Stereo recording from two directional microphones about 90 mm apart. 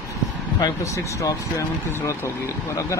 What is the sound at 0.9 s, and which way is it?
Speech, 35° left (ahead or behind).